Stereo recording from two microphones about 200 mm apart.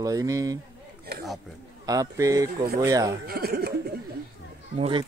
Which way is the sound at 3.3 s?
50° right (ahead or behind).